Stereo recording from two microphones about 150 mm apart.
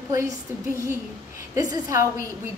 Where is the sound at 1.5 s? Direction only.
20° right (ahead or behind).